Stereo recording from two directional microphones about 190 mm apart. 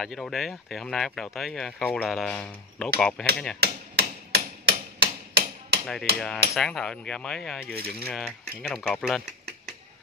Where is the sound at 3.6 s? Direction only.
60° right (ahead or behind).